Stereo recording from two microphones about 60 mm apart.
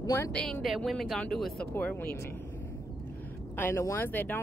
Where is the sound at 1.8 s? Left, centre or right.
Left.